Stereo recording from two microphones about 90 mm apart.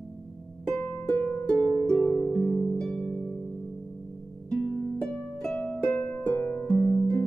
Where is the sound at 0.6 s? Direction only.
20° left (ahead or behind).